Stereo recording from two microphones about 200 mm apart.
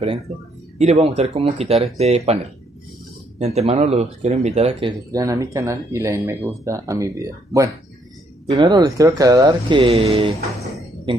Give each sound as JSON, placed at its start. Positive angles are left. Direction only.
{"t": 0.7, "sound": "speech", "side_deg": -30}